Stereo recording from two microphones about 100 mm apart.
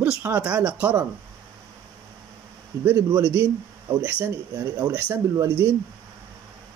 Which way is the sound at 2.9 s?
25° right (ahead or behind).